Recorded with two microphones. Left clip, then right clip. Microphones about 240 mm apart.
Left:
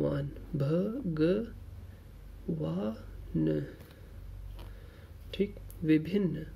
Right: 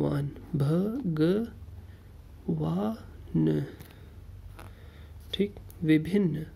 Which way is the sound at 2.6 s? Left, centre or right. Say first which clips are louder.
Right 3 dB; right.